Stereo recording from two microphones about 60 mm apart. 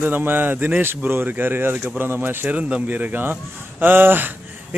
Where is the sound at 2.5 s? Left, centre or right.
Right.